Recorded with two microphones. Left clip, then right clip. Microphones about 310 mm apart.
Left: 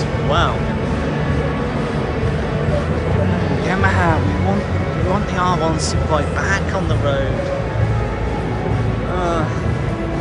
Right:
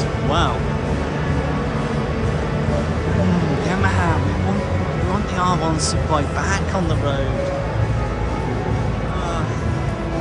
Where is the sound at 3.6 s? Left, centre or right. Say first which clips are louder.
Left 6 dB; centre.